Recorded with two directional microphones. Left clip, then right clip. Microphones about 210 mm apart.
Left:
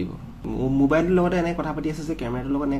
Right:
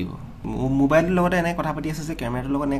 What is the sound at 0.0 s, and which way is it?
Speech, 25° right (ahead or behind).